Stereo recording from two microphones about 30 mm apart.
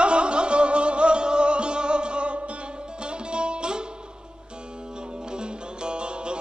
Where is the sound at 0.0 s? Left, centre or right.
Right.